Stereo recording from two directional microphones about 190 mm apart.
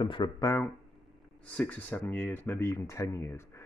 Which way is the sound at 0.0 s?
25° left (ahead or behind).